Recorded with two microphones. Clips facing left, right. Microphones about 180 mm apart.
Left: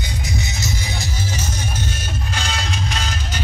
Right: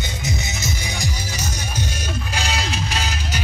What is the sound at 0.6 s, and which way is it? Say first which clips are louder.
Music: even; 15° right (ahead or behind).